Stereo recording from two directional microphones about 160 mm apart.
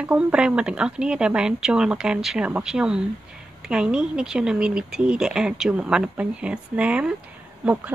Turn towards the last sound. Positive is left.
turn(degrees=-10)  # may be behind; listen again after turning